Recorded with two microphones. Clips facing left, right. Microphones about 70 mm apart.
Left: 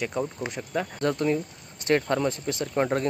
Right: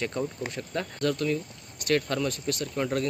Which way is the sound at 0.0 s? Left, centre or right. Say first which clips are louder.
Left 2 dB; centre.